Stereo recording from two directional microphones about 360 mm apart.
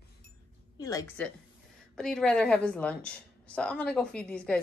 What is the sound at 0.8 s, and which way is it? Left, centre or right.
A woman's voice, centre.